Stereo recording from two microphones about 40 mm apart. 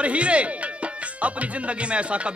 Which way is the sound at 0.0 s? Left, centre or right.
Right.